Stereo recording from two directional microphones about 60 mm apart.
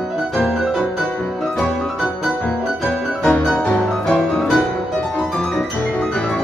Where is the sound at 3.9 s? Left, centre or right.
Centre.